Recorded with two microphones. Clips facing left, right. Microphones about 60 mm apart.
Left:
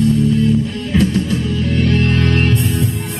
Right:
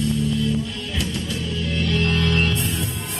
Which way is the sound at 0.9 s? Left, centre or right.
Left.